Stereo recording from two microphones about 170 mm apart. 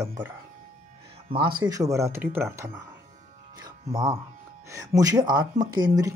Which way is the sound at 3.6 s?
20° right (ahead or behind).